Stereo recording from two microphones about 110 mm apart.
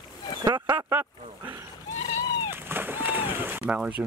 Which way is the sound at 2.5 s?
20° right (ahead or behind).